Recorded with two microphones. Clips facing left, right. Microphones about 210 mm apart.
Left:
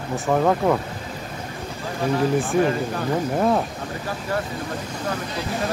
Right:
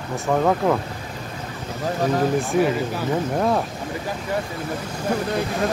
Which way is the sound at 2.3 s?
Centre (ahead or behind).